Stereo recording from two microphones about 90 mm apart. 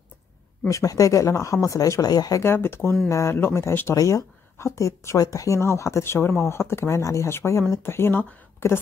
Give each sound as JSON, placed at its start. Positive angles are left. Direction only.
{"t": 0.7, "sound": "speech", "side_deg": 40}
{"t": 2.4, "sound": "speech", "side_deg": 25}